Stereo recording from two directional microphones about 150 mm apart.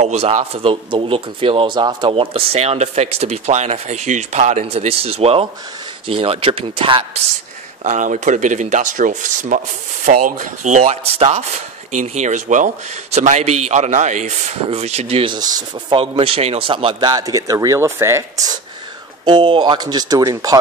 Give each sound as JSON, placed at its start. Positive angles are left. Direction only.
{"t": 0.0, "sound": "speech", "side_deg": -45}
{"t": 7.8, "sound": "speech", "side_deg": -55}
{"t": 15.3, "sound": "a man's voice", "side_deg": -25}
{"t": 16.0, "sound": "a man's voice", "side_deg": -40}
{"t": 19.2, "sound": "a man's voice", "side_deg": -30}